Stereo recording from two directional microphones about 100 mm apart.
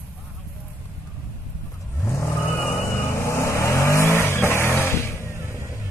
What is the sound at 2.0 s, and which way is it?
Vehicle, 25° left (ahead or behind).